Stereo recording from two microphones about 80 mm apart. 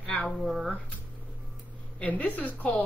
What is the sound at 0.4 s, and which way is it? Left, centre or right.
Speech, centre.